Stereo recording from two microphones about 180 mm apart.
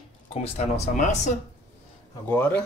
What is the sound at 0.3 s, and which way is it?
Speech, 35° left (ahead or behind).